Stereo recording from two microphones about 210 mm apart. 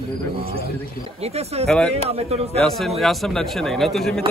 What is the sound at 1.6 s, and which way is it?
Speech, centre (ahead or behind).